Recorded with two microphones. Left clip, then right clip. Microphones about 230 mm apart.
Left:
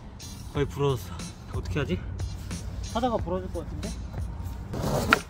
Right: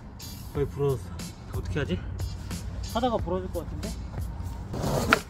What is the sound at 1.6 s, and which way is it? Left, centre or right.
Speech, centre.